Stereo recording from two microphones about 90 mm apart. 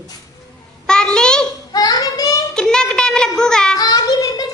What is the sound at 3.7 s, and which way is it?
Child singing, 45° left (ahead or behind).